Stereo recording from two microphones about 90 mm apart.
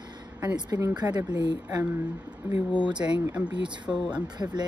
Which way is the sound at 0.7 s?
35° right (ahead or behind).